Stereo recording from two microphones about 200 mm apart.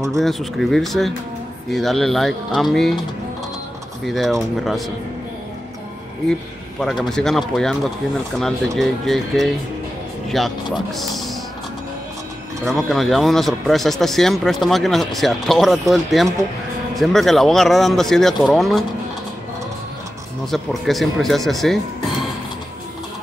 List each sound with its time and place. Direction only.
0.1 s speech: centre (ahead or behind)
4.0 s speech: centre (ahead or behind)
6.8 s speech: centre (ahead or behind)
12.6 s speech: centre (ahead or behind)
20.5 s speech: centre (ahead or behind)